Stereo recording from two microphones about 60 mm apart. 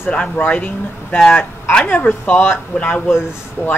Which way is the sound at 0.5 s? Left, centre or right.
Left.